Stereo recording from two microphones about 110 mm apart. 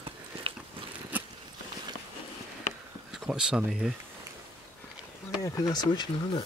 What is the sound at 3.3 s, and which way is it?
Speech, 5° right (ahead or behind).